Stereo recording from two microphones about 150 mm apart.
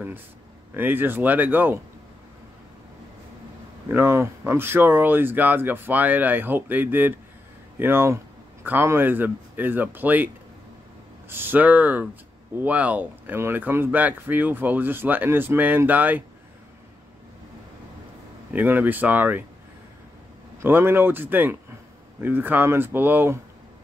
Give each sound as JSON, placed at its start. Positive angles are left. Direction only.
{"t": 0.7, "sound": "speech", "side_deg": -15}
{"t": 3.9, "sound": "speech", "side_deg": -15}
{"t": 18.5, "sound": "speech", "side_deg": -10}
{"t": 20.6, "sound": "speech", "side_deg": -15}